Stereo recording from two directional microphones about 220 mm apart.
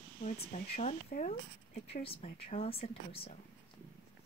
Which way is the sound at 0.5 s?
30° left (ahead or behind).